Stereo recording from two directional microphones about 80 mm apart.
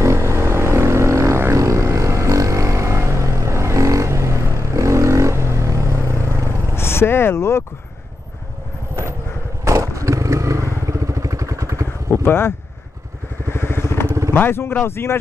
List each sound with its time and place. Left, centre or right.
0.0 s vehicle: right
6.7 s a sound: left
9.7 s motorcycle: right
12.1 s speech: left
13.5 s vehicle: left
14.3 s speech: left